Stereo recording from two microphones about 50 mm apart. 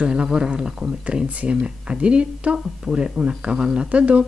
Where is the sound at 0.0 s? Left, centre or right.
Centre.